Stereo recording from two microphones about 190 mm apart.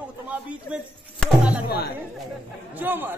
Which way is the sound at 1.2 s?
5° left (ahead or behind).